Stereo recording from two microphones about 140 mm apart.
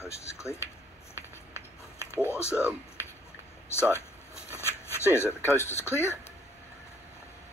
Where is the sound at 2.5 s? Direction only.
10° right (ahead or behind).